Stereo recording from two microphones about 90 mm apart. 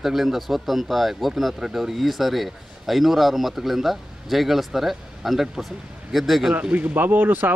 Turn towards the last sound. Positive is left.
turn(degrees=-20)  # may be behind; listen again after turning